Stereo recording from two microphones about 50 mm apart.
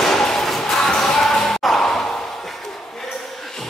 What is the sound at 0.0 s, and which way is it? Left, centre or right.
Music, centre.